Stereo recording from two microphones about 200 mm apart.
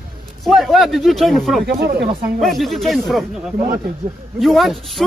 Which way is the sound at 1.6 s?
55° right (ahead or behind).